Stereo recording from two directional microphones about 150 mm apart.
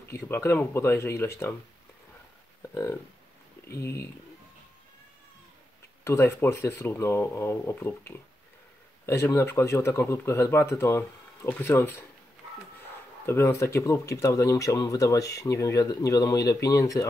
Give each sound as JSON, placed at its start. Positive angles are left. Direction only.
{"t": 0.2, "sound": "speech", "side_deg": 15}
{"t": 2.7, "sound": "speech", "side_deg": 20}
{"t": 6.0, "sound": "speech", "side_deg": 15}
{"t": 13.2, "sound": "speech", "side_deg": 15}